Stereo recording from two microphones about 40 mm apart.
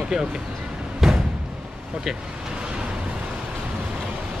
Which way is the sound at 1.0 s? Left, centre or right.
Centre.